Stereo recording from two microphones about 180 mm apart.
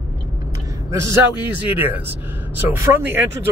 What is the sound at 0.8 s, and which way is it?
Speech, 15° right (ahead or behind).